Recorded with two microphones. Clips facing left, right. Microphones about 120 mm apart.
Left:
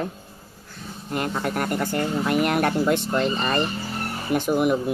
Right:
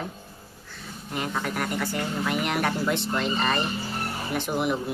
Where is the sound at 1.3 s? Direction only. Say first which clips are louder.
Left 3 dB; 40° left (ahead or behind).